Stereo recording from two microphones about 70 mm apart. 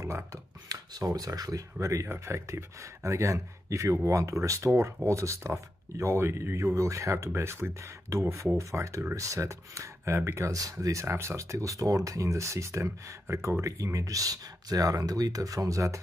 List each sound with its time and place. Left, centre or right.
0.0 s speech: right
0.9 s speech: right
1.8 s speech: right